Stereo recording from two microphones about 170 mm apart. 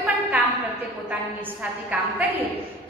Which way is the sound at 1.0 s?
10° right (ahead or behind).